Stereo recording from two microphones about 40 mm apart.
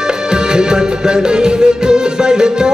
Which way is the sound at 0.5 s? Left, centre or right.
Centre.